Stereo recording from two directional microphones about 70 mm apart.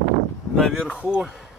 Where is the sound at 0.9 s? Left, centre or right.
Centre.